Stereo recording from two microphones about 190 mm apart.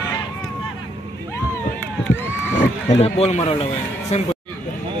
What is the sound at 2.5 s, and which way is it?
Speech, 40° left (ahead or behind).